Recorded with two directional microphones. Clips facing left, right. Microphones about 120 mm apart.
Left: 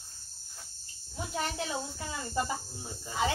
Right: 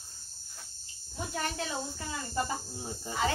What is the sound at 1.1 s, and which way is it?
Speech, 10° left (ahead or behind).